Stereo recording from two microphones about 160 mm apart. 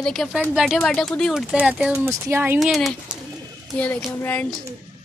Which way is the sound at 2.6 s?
Centre (ahead or behind).